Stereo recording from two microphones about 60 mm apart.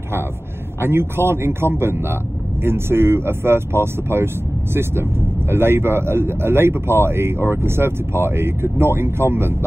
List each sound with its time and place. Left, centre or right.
0.7 s speech: right
5.5 s speech: right